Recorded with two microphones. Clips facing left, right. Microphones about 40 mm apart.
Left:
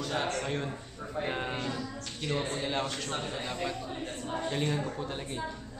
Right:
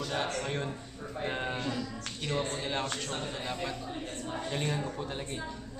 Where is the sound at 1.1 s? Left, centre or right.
Centre.